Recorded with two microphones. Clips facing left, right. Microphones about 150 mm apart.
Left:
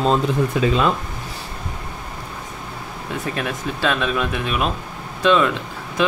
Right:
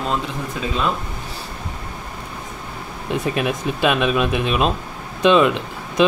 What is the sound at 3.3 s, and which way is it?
Speech, 15° right (ahead or behind).